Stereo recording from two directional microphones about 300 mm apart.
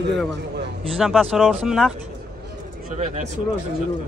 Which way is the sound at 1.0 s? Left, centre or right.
Centre.